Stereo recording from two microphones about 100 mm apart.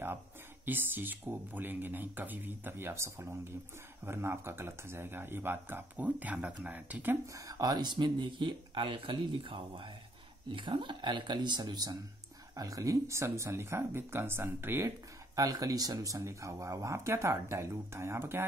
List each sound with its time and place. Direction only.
0.7 s speech: 20° right (ahead or behind)
7.3 s speech: 35° right (ahead or behind)
15.3 s speech: 40° right (ahead or behind)